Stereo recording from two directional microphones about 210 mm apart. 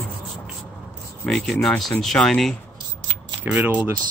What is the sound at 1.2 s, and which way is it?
Speech, centre (ahead or behind).